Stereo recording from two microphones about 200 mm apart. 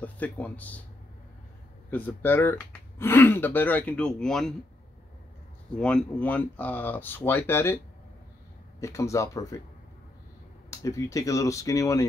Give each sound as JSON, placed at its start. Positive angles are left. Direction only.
{"t": 0.0, "sound": "speech", "side_deg": 10}
{"t": 1.9, "sound": "speech", "side_deg": 10}
{"t": 5.8, "sound": "speech", "side_deg": 5}
{"t": 8.8, "sound": "speech", "side_deg": 15}
{"t": 10.8, "sound": "speech", "side_deg": 15}